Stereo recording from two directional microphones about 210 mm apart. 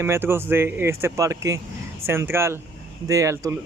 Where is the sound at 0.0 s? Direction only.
10° right (ahead or behind).